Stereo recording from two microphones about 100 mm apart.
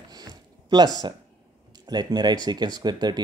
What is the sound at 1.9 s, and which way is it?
Speech, 45° right (ahead or behind).